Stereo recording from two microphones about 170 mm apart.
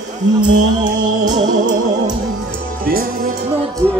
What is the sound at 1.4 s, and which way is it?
Music, 50° right (ahead or behind).